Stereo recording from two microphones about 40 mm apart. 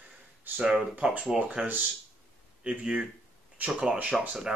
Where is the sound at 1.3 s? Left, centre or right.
Centre.